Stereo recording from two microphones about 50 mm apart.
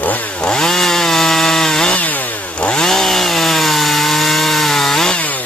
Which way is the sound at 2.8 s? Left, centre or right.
Centre.